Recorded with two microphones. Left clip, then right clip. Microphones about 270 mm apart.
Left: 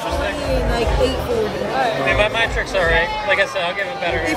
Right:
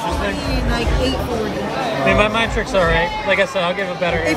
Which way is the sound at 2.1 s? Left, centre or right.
Centre.